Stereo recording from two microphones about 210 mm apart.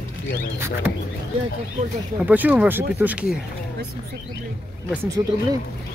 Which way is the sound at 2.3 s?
5° right (ahead or behind).